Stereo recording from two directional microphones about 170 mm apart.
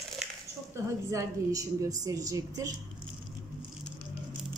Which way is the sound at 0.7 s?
20° right (ahead or behind).